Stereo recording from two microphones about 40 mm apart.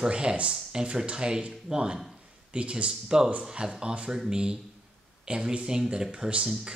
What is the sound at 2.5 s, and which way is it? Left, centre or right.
Speech, right.